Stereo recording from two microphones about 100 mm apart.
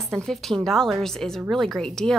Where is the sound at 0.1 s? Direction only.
Centre (ahead or behind).